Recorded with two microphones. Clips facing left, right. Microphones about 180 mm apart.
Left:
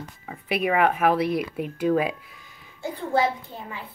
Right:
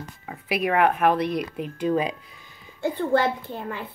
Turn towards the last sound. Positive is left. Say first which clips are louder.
# right 4 dB
turn(degrees=-65)  # may be behind; listen again after turning